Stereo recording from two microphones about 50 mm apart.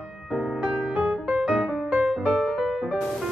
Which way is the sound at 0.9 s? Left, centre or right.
Centre.